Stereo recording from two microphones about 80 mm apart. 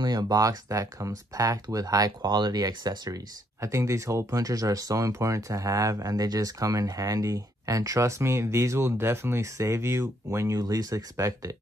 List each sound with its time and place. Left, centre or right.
0.0 s speech: right
3.6 s speech: right